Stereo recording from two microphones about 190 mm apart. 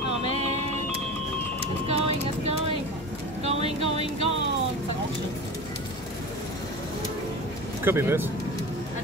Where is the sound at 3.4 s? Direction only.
35° right (ahead or behind).